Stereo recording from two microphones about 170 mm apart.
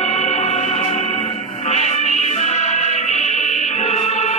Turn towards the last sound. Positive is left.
turn(degrees=40)  # may be behind; listen again after turning